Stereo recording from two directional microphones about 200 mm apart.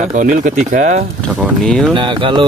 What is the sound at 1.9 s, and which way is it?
Speech, 25° right (ahead or behind).